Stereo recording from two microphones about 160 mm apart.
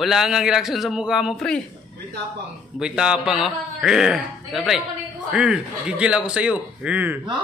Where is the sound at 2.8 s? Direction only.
5° right (ahead or behind).